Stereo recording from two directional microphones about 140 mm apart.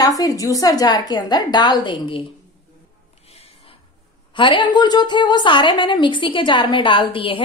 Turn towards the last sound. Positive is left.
turn(degrees=40)  # may be behind; listen again after turning